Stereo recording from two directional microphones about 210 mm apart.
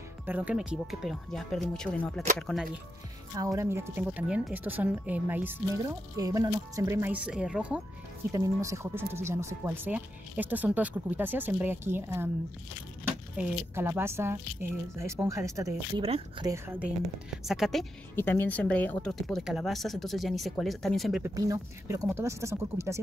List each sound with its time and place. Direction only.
0.3 s speech: 5° right (ahead or behind)
3.3 s speech: 15° right (ahead or behind)
13.4 s speech: 10° right (ahead or behind)
16.0 s speech: 25° right (ahead or behind)
16.4 s speech: 10° right (ahead or behind)
17.5 s speech: centre (ahead or behind)
21.2 s speech: 15° right (ahead or behind)